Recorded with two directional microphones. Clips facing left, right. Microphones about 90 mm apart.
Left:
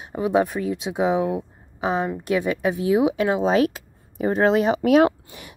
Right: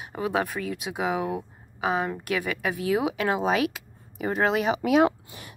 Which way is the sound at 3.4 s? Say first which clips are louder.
Left 5 dB; 35° left (ahead or behind).